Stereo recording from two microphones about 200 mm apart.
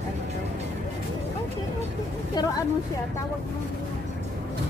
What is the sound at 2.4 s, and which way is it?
Speech, 20° left (ahead or behind).